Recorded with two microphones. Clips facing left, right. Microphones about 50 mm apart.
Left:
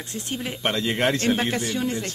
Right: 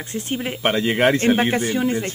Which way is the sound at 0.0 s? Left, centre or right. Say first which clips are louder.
Right 5 dB; right.